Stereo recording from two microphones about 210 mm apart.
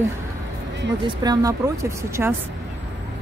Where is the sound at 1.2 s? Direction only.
15° right (ahead or behind).